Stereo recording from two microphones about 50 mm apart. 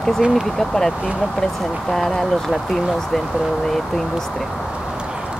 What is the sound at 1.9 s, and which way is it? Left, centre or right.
Speech, centre.